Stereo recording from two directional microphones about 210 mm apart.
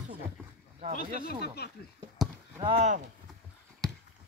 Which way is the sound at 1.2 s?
50° left (ahead or behind).